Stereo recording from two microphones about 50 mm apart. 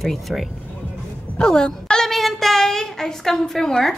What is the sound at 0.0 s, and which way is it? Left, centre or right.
Speech, centre.